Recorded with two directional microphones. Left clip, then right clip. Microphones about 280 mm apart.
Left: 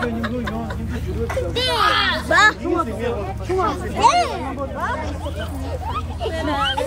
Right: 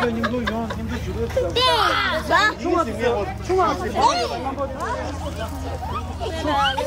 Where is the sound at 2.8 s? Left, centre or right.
Right.